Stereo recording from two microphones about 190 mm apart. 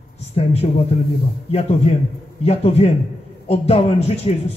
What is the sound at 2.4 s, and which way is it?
A man's voice, 30° left (ahead or behind).